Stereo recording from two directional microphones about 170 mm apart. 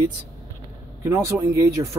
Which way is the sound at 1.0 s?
20° right (ahead or behind).